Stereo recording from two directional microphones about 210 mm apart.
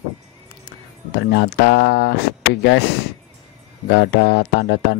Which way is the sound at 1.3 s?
50° left (ahead or behind).